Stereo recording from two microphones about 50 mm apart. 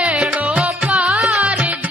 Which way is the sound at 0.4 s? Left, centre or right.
Right.